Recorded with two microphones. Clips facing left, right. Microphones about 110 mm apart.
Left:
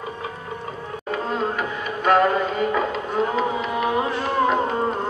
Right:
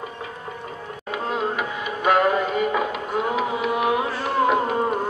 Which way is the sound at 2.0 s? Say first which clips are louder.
Left 1 dB; 5° right (ahead or behind).